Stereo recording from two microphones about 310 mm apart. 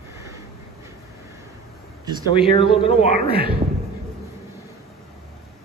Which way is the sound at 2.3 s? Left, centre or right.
Centre.